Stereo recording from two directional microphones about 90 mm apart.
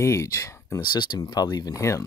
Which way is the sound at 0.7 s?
55° left (ahead or behind).